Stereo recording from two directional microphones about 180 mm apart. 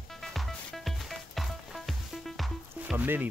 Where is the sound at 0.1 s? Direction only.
Centre (ahead or behind).